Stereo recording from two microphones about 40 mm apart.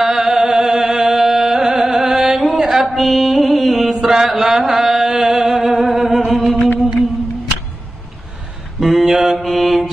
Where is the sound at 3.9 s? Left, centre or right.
Centre.